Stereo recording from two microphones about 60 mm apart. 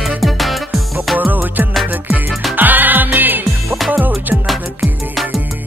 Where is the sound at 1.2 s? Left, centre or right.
Right.